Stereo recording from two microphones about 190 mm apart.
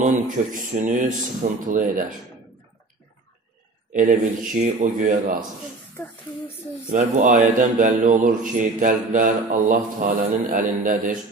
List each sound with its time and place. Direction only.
0.0 s speech: 45° right (ahead or behind)
3.9 s speech: 45° right (ahead or behind)
6.9 s speech: 40° right (ahead or behind)